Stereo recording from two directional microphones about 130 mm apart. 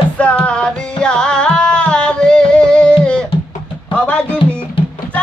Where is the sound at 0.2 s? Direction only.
10° left (ahead or behind).